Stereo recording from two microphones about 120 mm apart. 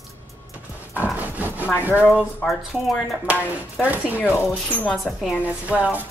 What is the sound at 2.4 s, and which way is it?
Speech, centre (ahead or behind).